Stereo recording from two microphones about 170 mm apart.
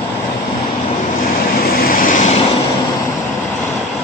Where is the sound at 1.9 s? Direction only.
50° left (ahead or behind).